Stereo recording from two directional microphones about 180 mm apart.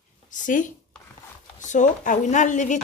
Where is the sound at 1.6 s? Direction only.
45° left (ahead or behind).